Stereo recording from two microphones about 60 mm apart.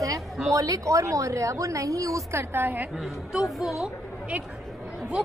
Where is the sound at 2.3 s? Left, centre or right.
Right.